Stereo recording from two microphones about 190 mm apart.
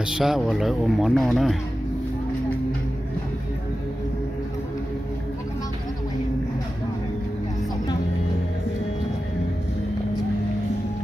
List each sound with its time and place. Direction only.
0.0 s speech: centre (ahead or behind)